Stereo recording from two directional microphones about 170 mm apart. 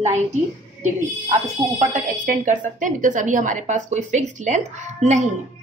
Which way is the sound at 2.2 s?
50° right (ahead or behind).